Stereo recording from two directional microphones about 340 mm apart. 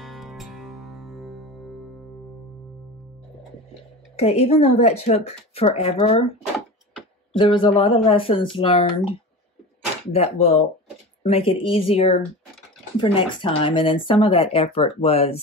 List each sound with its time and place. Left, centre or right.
0.0 s music: centre
4.2 s speech: centre
7.3 s speech: centre
10.1 s speech: centre